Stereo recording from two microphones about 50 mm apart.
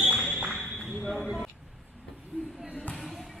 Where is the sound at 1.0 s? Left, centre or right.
Centre.